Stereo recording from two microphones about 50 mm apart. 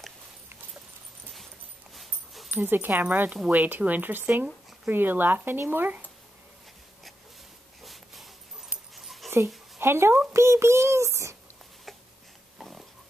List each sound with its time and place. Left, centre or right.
2.0 s dog: centre
2.5 s speech: right
7.8 s dog: centre
9.8 s speech: right
10.3 s a child's voice: right
12.5 s pig: centre